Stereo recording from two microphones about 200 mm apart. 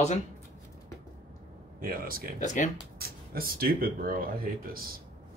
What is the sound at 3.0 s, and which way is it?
Speech, 50° right (ahead or behind).